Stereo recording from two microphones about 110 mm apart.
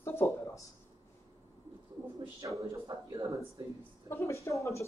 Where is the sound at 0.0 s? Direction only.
20° left (ahead or behind).